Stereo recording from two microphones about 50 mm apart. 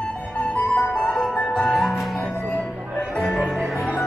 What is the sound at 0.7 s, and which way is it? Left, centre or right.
Music, centre.